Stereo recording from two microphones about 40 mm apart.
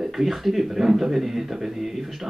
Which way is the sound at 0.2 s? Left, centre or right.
Centre.